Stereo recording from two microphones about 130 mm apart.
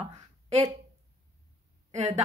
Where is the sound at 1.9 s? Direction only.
60° right (ahead or behind).